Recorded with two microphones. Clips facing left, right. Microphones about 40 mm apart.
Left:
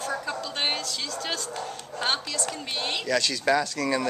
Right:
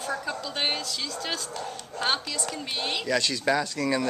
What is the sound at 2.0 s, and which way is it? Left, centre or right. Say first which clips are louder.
Speech: even; centre.